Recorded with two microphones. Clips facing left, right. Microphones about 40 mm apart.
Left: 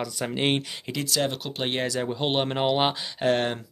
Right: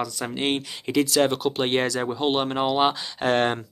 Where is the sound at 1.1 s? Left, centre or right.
Centre.